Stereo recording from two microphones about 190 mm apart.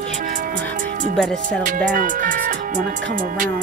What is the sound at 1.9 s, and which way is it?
Music, 45° right (ahead or behind).